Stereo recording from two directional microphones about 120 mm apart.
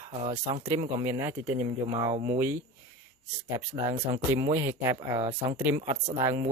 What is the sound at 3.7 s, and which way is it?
Speech, 40° right (ahead or behind).